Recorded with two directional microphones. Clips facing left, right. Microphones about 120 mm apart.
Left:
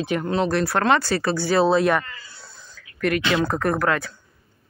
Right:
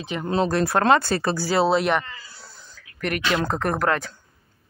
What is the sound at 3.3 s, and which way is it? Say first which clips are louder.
Speech: left 2 dB; 20° right (ahead or behind).